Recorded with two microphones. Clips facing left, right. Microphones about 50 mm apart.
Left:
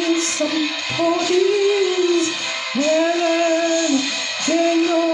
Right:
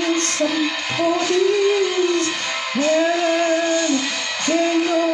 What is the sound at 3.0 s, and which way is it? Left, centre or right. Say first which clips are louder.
Music: left 1 dB; centre.